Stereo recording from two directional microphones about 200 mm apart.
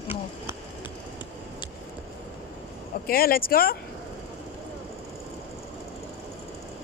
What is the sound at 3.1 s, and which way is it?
Speech, 45° left (ahead or behind).